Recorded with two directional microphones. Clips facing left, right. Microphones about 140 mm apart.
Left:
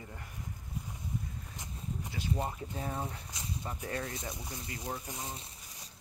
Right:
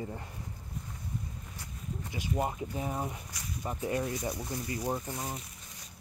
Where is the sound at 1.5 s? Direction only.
20° left (ahead or behind).